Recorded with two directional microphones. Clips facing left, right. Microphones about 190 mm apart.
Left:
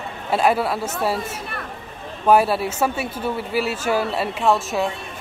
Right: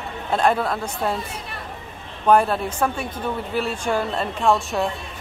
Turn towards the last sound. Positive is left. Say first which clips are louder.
# left 1 dB
turn(degrees=0)  # may be behind; listen again after turning